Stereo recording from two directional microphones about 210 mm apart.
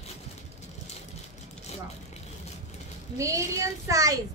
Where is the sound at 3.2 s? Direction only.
15° right (ahead or behind).